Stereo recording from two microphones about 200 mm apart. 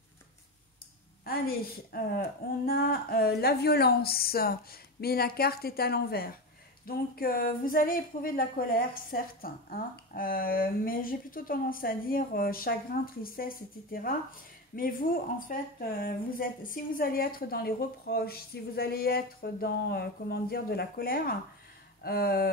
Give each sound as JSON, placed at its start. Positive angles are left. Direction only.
{"t": 1.2, "sound": "speech", "side_deg": 50}